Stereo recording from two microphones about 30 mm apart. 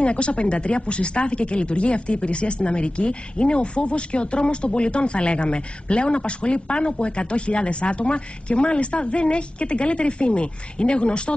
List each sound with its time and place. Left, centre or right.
0.0 s speech: left